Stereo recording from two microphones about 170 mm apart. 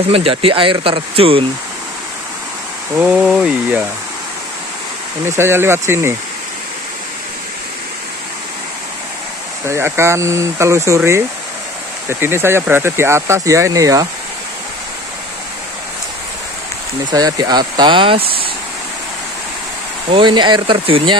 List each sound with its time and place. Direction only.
0.0 s speech: 35° right (ahead or behind)
3.0 s speech: 5° right (ahead or behind)
5.2 s speech: 15° right (ahead or behind)
9.7 s speech: 15° right (ahead or behind)
17.1 s speech: 20° right (ahead or behind)
20.1 s speech: 30° right (ahead or behind)